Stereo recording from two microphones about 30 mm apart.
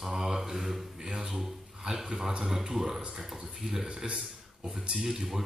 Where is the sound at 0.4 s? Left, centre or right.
Centre.